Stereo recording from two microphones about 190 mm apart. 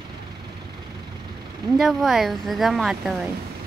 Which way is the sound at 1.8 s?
Centre (ahead or behind).